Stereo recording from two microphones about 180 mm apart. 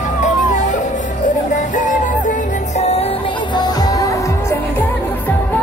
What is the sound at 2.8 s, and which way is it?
Music, 35° left (ahead or behind).